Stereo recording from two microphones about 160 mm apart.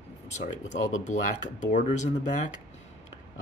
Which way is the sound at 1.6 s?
50° left (ahead or behind).